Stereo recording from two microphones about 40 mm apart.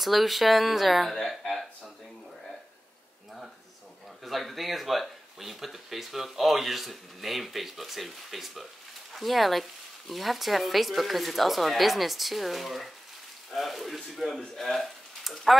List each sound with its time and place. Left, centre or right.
0.0 s speech: centre
4.2 s speech: centre